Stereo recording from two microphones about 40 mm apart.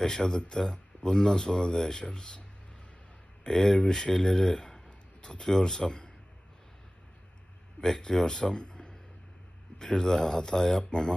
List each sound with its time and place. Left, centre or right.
0.0 s speech: centre
3.4 s speech: centre
7.8 s a man's voice: centre